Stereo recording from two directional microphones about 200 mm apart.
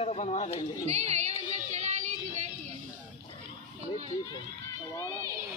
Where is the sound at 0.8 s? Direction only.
35° right (ahead or behind).